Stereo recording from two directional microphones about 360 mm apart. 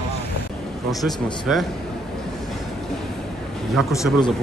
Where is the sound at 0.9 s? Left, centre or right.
Centre.